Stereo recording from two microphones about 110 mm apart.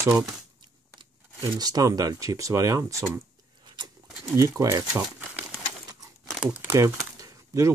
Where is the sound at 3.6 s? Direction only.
45° right (ahead or behind).